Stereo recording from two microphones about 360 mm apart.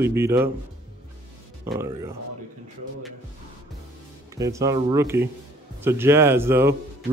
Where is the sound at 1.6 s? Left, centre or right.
Centre.